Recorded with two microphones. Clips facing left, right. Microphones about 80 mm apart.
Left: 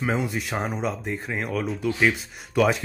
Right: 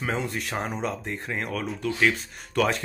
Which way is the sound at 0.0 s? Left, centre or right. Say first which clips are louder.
Left 3 dB; centre.